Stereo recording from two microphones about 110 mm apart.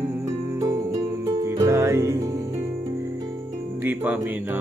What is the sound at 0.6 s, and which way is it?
Music, 30° right (ahead or behind).